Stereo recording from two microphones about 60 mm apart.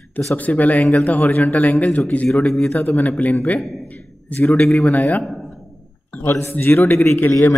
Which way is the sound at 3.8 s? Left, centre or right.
Left.